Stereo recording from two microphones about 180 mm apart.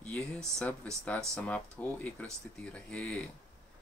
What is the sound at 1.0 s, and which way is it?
Speech, 5° left (ahead or behind).